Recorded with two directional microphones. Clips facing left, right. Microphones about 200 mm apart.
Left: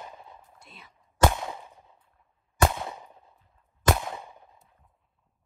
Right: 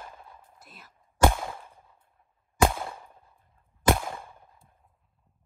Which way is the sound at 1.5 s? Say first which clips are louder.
Left 2 dB; 15° left (ahead or behind).